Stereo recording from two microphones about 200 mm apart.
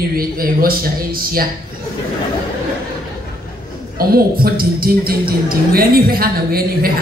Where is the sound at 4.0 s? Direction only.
50° right (ahead or behind).